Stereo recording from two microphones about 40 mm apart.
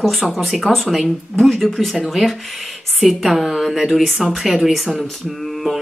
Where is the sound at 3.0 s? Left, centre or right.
Centre.